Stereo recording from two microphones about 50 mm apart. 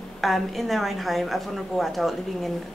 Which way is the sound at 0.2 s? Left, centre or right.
Centre.